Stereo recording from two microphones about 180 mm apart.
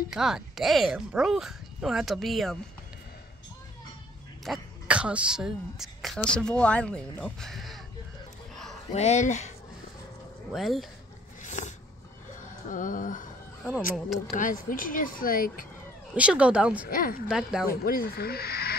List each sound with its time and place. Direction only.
0.1 s speech: 5° right (ahead or behind)
4.5 s speech: 5° right (ahead or behind)
8.9 s speech: 40° left (ahead or behind)
10.5 s speech: centre (ahead or behind)
11.4 s a sound: 40° left (ahead or behind)
12.7 s speech: 45° left (ahead or behind)
13.9 s speech: centre (ahead or behind)
14.3 s speech: 50° left (ahead or behind)
16.2 s speech: 5° right (ahead or behind)
16.9 s speech: 50° left (ahead or behind)
17.3 s speech: 5° right (ahead or behind)
17.6 s speech: 55° left (ahead or behind)